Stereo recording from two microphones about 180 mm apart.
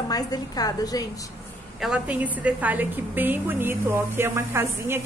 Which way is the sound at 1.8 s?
5° right (ahead or behind).